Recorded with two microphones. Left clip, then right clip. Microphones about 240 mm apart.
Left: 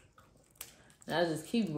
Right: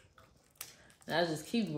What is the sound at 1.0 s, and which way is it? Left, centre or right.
Speech, centre.